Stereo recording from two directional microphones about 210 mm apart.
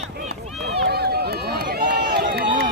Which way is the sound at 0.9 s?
50° right (ahead or behind).